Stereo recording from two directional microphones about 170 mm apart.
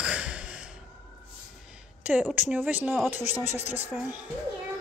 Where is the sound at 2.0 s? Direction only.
10° right (ahead or behind).